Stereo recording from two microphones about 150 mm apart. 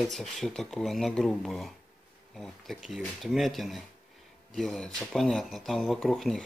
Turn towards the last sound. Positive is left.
turn(degrees=0)  # may be behind; listen again after turning